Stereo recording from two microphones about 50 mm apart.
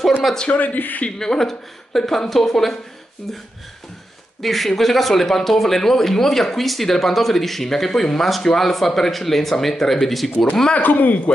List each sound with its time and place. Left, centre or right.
0.5 s speech: left
1.1 s a woman's voice: centre
4.4 s speech: centre
10.3 s speech: left
10.8 s speech: left